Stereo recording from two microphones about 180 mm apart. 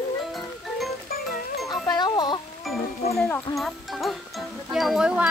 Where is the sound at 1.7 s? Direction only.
20° left (ahead or behind).